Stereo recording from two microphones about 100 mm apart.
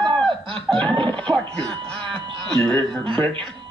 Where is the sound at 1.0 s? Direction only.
10° left (ahead or behind).